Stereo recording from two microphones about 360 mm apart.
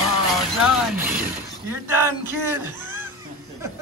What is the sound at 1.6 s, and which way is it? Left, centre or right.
A man's voice, centre.